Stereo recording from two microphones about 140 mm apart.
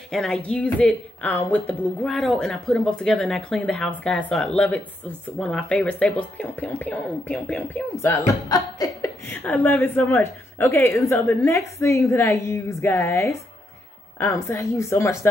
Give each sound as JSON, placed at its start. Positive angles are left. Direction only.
{"t": 0.1, "sound": "a woman's voice", "side_deg": 5}